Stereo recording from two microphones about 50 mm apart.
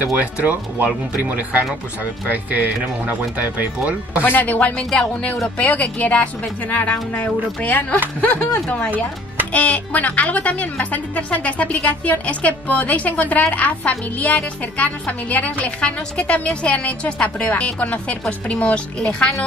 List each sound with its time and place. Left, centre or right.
0.0 s speech: right
4.2 s speech: left; by 19.4 s centre